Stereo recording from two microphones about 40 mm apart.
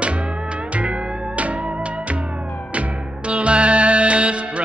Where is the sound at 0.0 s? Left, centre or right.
Right.